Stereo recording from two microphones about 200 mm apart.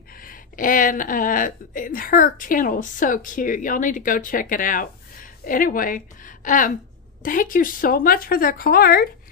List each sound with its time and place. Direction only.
0.2 s speech: 45° left (ahead or behind)